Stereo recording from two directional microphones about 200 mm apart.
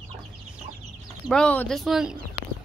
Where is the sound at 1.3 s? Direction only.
5° left (ahead or behind).